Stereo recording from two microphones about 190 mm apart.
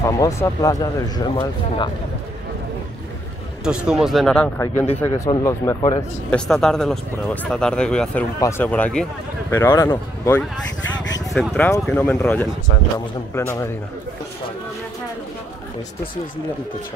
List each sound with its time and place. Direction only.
0.0 s speech: 15° left (ahead or behind)
3.6 s speech: 5° right (ahead or behind)
5.0 s speech: 15° left (ahead or behind)
6.3 s speech: 5° left (ahead or behind)
11.3 s speech: 5° left (ahead or behind)